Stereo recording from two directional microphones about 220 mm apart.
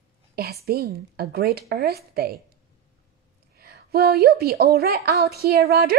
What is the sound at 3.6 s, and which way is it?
Speech, 45° right (ahead or behind).